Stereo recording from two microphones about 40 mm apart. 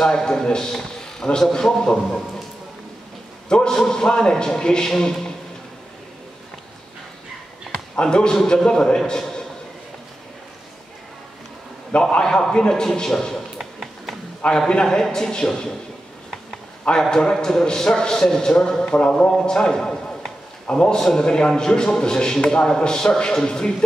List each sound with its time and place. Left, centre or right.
0.0 s a man's voice: left
3.4 s a man's voice: left
8.0 s a man's voice: left
12.2 s a man's voice: centre
13.6 s tap: centre
14.7 s a man's voice: centre
17.1 s a man's voice: centre